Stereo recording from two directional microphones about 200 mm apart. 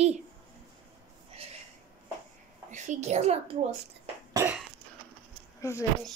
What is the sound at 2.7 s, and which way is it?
Speech, 35° right (ahead or behind).